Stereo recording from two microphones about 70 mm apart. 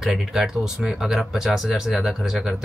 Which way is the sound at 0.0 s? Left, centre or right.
Centre.